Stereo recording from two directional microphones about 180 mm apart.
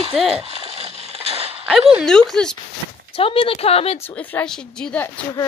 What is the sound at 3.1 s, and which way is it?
Speech, 30° left (ahead or behind).